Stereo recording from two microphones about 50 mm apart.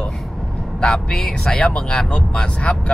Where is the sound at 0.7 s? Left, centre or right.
Centre.